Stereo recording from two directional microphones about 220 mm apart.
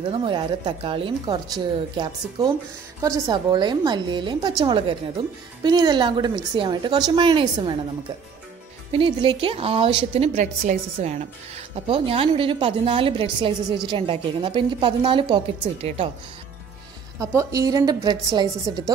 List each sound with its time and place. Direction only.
0.1 s a woman's voice: 20° right (ahead or behind)
8.9 s a woman's voice: 25° right (ahead or behind)
17.2 s a woman's voice: 15° right (ahead or behind)